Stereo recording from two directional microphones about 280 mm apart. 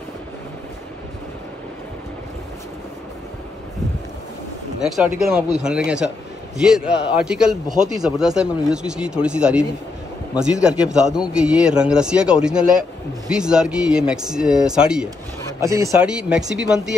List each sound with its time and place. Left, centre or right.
4.7 s a man's voice: centre
7.2 s a man's voice: centre